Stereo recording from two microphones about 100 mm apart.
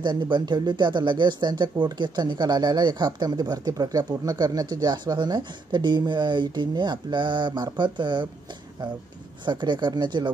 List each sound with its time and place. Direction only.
0.0 s speech: 45° right (ahead or behind)
9.5 s speech: 50° right (ahead or behind)